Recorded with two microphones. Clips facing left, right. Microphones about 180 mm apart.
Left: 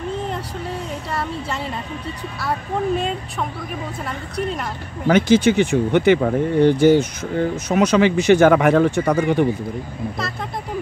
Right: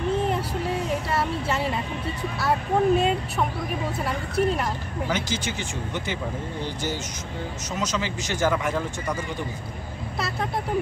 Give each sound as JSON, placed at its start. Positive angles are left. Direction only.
{"t": 1.1, "sound": "a sound", "side_deg": 0}
{"t": 3.0, "sound": "speech", "side_deg": 0}
{"t": 5.0, "sound": "speech", "side_deg": 60}